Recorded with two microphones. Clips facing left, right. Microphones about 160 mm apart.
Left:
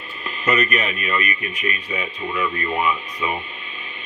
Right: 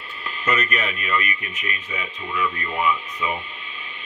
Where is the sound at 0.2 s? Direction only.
15° left (ahead or behind).